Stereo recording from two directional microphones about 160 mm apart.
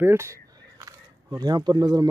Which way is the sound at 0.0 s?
15° right (ahead or behind).